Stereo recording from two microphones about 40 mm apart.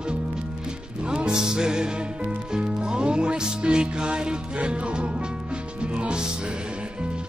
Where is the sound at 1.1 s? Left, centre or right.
Centre.